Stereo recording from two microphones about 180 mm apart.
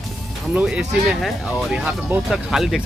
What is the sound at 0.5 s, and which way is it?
Speech, 5° right (ahead or behind).